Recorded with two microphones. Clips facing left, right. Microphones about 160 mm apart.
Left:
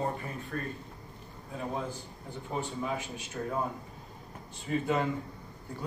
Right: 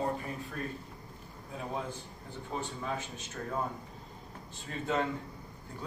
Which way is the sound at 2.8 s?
10° left (ahead or behind).